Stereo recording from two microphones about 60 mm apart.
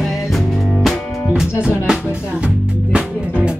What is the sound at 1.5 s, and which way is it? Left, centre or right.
Speech, centre.